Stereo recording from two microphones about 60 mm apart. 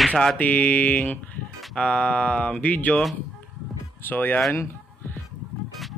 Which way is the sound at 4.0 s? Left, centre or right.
Left.